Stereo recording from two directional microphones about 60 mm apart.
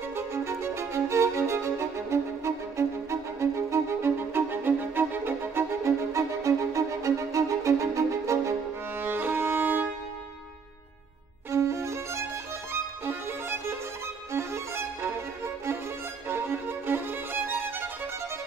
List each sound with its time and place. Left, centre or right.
0.1 s music: right
9.0 s music: right
11.5 s violin: right
13.0 s music: right
14.3 s violin: right
16.3 s music: right